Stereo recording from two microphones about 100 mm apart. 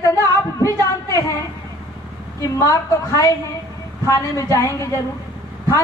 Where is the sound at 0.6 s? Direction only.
30° left (ahead or behind).